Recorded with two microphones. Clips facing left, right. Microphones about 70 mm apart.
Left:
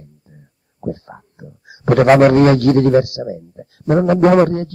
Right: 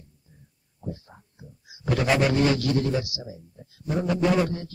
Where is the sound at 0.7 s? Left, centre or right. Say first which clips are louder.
Left 12 dB; left.